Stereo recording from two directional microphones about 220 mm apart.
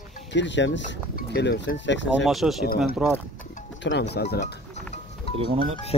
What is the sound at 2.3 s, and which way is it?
Speech, centre (ahead or behind).